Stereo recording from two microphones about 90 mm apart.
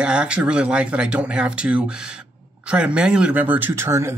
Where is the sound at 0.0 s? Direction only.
10° right (ahead or behind).